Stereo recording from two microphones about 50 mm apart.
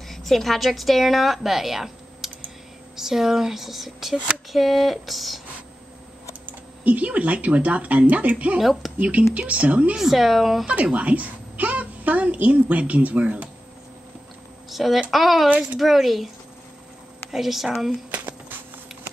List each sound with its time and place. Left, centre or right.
0.1 s a woman's voice: centre
6.4 s speech: right
8.5 s speech: centre
9.5 s speech: right
9.9 s speech: centre
10.7 s a woman's voice: right
14.7 s speech: centre
17.3 s speech: centre
18.1 s a sound: right